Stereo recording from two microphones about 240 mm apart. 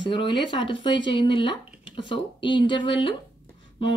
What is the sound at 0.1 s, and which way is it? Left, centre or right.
Speech, centre.